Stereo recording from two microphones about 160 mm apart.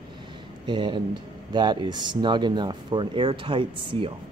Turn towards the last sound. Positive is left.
turn(degrees=-30)  # may be behind; listen again after turning